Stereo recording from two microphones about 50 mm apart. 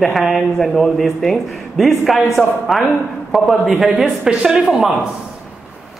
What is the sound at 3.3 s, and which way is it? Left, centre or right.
Speech, centre.